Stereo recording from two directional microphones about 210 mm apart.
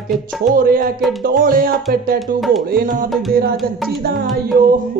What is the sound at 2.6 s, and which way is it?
Speech, 45° right (ahead or behind).